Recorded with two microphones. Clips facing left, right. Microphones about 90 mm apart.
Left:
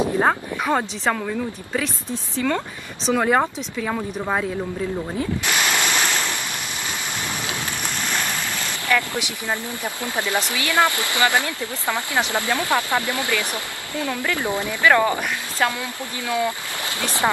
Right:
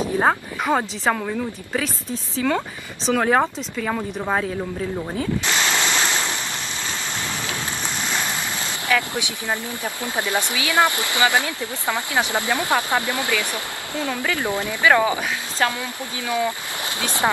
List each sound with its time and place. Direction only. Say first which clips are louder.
0.2 s speech: even; 5° right (ahead or behind)
5.4 s a sound: even; 15° left (ahead or behind)
6.0 s waves: even; 20° right (ahead or behind)
8.8 s speech: even; 20° right (ahead or behind)
15.6 s speech: even; centre (ahead or behind)
17.0 s speech: even; 20° right (ahead or behind)